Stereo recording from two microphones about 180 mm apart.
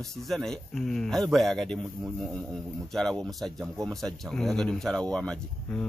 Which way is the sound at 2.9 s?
5° left (ahead or behind).